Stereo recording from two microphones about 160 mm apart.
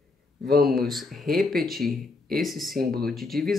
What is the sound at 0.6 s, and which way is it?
Speech, centre (ahead or behind).